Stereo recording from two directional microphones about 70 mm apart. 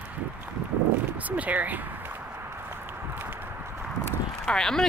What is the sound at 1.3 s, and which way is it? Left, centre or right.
Speech, right.